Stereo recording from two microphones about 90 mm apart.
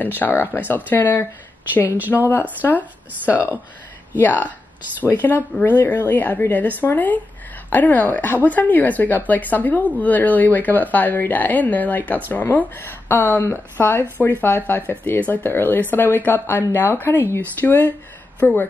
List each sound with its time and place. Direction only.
0.0 s speech: 20° left (ahead or behind)
4.2 s speech: 20° left (ahead or behind)